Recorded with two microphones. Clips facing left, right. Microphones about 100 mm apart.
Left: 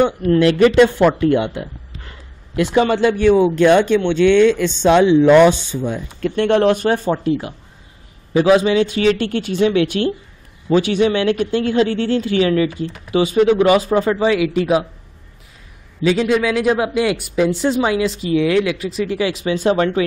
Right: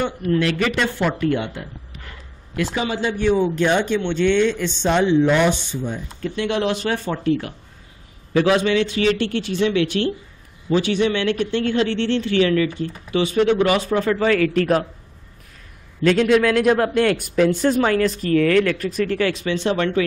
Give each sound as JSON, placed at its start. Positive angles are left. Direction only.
{"t": 0.0, "sound": "speech", "side_deg": 85}
{"t": 3.9, "sound": "speech", "side_deg": 90}
{"t": 6.3, "sound": "speech", "side_deg": 50}
{"t": 6.9, "sound": "speech", "side_deg": 30}
{"t": 9.1, "sound": "speech", "side_deg": 40}
{"t": 11.0, "sound": "speech", "side_deg": 40}
{"t": 12.3, "sound": "speech", "side_deg": 25}
{"t": 14.2, "sound": "speech", "side_deg": 10}
{"t": 16.0, "sound": "speech", "side_deg": 5}
{"t": 19.6, "sound": "speech", "side_deg": 30}